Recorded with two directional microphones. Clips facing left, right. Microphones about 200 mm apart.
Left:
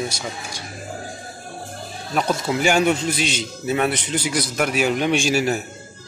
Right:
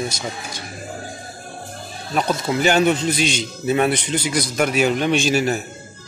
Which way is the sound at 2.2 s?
5° left (ahead or behind).